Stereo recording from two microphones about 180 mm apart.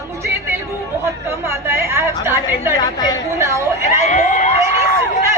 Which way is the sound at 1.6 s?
15° right (ahead or behind).